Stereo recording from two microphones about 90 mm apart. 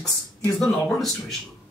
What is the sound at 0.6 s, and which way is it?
Speech, 5° left (ahead or behind).